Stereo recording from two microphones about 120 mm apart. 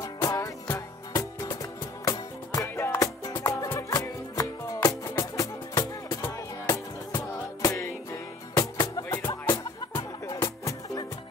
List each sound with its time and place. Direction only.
0.0 s music: 25° left (ahead or behind)
9.2 s music: 20° left (ahead or behind)
9.5 s music: 40° left (ahead or behind)
10.2 s music: 25° left (ahead or behind)